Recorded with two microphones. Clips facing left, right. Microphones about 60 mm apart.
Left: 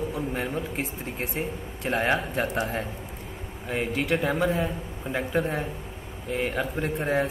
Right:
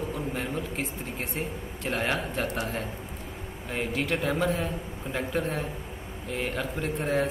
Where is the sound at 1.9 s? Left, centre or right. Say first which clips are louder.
Left 4 dB; centre.